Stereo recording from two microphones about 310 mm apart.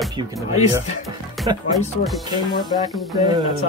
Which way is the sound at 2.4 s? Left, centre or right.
Centre.